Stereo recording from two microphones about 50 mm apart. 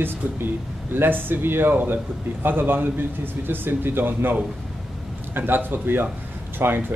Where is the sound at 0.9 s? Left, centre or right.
Right.